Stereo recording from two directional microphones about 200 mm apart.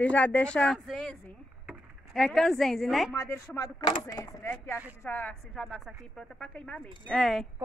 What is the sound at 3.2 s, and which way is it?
A woman's voice, 15° left (ahead or behind).